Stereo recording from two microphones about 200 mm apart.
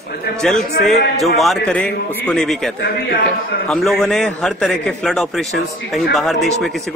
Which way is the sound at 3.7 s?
Centre (ahead or behind).